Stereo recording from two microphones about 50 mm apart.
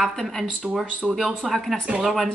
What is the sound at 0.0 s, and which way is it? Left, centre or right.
Speech, centre.